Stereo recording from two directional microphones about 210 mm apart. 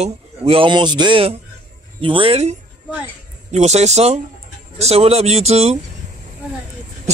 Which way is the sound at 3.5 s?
30° right (ahead or behind).